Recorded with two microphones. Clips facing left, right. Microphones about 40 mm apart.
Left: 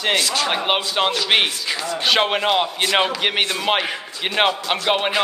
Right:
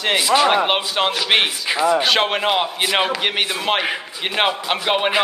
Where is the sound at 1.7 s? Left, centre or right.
Centre.